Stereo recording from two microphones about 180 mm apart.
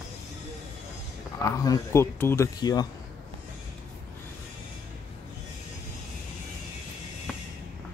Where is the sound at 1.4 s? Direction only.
20° left (ahead or behind).